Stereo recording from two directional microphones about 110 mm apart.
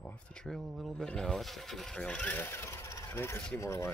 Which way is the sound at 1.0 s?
5° left (ahead or behind).